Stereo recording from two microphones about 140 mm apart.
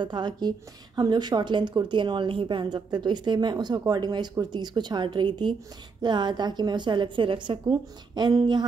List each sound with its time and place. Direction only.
0.0 s a woman's voice: 30° right (ahead or behind)